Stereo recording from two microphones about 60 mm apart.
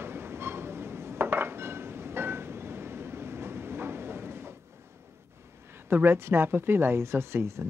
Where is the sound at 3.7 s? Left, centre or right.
Right.